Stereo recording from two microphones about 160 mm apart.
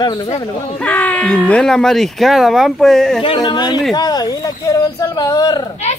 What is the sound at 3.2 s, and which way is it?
Speech, 30° left (ahead or behind).